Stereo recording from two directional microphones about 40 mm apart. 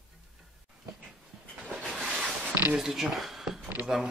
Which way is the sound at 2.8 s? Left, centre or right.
Centre.